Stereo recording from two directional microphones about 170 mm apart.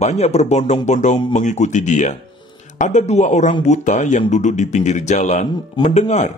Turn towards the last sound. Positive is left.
turn(degrees=45)  # may be behind; listen again after turning